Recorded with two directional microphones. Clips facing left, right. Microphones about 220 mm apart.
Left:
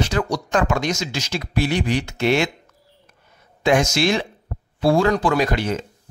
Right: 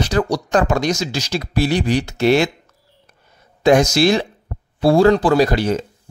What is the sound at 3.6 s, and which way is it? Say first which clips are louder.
Speech: right 5 dB; 40° right (ahead or behind).